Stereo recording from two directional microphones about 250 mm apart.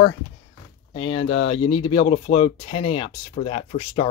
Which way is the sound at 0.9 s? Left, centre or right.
Left.